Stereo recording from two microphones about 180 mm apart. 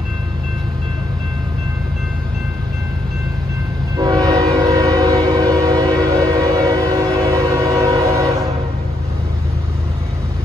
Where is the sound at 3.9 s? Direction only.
20° right (ahead or behind).